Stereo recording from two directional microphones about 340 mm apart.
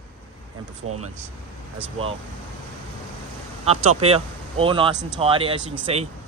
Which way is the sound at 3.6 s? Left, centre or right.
Centre.